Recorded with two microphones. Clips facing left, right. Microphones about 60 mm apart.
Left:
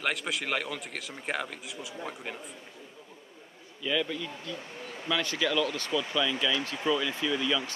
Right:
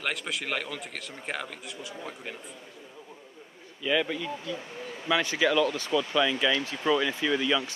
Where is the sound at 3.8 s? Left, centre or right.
Right.